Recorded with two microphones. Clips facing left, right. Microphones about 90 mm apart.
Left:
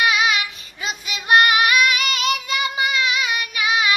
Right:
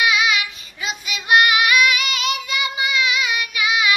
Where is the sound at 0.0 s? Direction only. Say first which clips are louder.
Even; 40° left (ahead or behind).